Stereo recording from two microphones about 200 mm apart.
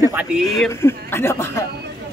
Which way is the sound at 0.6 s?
10° left (ahead or behind).